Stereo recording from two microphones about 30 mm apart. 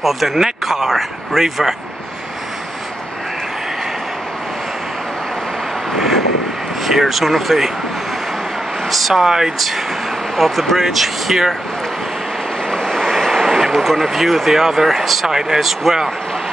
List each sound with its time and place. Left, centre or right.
0.0 s speech: centre
6.9 s speech: centre
8.9 s speech: centre
9.2 s speech: centre
10.3 s speech: centre
12.7 s vehicle: centre
13.4 s a sound: centre
13.8 s speech: centre
15.2 s speech: centre